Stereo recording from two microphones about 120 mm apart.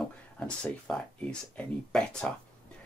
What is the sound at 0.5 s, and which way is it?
Speech, 5° left (ahead or behind).